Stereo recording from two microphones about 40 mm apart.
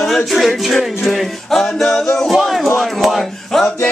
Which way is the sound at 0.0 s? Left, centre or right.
Centre.